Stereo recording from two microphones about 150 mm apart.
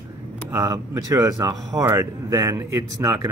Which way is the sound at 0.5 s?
20° right (ahead or behind).